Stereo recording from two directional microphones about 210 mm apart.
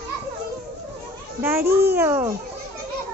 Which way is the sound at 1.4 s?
10° right (ahead or behind).